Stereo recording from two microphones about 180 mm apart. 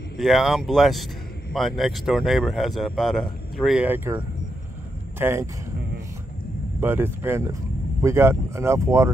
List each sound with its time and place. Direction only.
0.2 s speech: centre (ahead or behind)
5.2 s speech: 15° right (ahead or behind)
6.8 s speech: 10° right (ahead or behind)